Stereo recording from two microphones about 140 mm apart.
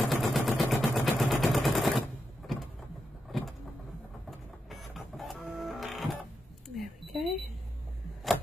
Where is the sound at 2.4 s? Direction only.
Centre (ahead or behind).